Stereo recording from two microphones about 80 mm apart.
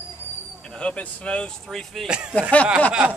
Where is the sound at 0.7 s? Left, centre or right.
Centre.